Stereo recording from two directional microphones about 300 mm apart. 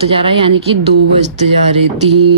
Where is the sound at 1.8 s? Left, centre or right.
Right.